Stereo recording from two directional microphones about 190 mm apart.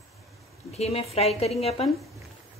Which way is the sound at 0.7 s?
35° left (ahead or behind).